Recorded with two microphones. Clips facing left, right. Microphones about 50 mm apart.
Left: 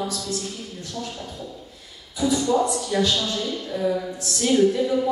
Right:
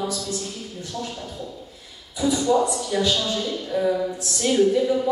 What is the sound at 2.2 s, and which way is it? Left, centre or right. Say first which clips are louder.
Speech: right 1 dB; centre.